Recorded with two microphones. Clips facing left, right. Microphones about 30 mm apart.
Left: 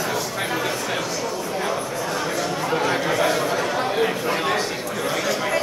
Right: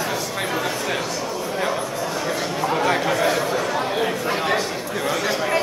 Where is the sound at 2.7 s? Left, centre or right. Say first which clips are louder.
Right 1 dB; centre.